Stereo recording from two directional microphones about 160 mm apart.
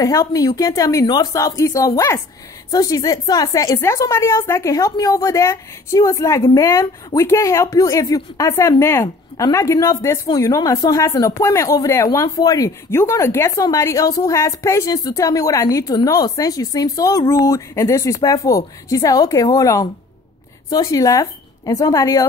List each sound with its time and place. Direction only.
0.0 s speech: 20° left (ahead or behind)